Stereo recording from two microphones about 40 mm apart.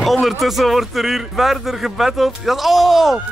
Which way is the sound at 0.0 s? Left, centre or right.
Centre.